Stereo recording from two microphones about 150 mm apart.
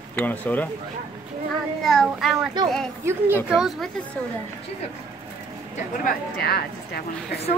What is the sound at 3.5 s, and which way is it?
Speech, 5° right (ahead or behind).